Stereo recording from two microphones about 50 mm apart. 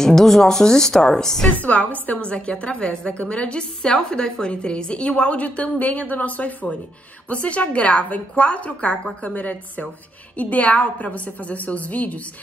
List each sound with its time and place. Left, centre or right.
0.0 s a woman's voice: centre
1.6 s a woman's voice: left